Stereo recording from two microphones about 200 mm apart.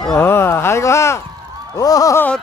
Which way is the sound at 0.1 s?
10° left (ahead or behind).